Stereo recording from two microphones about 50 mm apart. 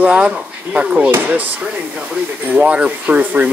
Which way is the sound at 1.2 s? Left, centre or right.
Right.